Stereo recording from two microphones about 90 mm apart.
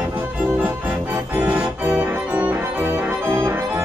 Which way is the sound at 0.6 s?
20° right (ahead or behind).